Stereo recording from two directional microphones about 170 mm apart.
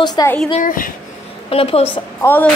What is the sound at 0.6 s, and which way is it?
Speech, 55° left (ahead or behind).